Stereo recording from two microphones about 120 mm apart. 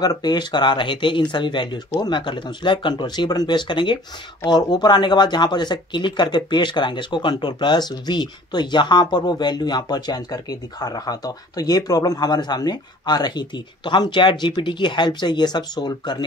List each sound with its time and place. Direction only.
0.0 s speech: 35° left (ahead or behind)